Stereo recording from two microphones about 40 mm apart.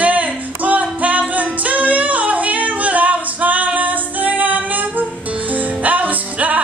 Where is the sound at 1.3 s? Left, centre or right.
Right.